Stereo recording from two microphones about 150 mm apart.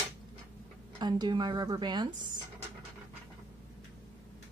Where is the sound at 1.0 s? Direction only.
30° right (ahead or behind).